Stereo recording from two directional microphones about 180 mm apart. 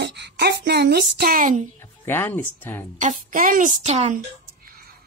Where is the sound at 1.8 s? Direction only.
10° left (ahead or behind).